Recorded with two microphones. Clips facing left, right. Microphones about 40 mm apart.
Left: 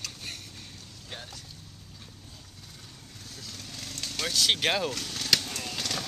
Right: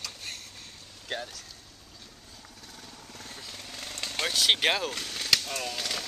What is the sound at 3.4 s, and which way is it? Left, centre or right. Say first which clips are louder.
Vehicle: left 1 dB; centre.